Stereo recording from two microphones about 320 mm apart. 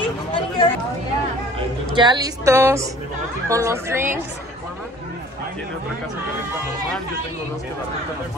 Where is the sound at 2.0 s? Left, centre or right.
Centre.